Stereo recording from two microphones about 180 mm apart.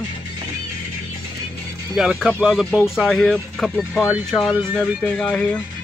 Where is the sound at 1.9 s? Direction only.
Centre (ahead or behind).